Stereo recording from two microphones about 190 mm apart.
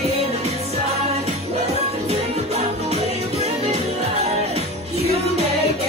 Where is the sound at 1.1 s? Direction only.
35° right (ahead or behind).